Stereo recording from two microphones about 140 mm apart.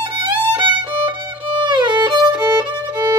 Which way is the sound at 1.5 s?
30° right (ahead or behind).